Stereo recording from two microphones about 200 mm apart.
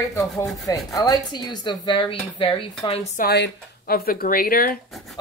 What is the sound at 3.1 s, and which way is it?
Speech, 50° left (ahead or behind).